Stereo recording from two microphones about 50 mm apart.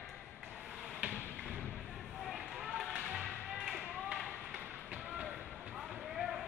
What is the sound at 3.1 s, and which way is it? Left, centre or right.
Music, centre.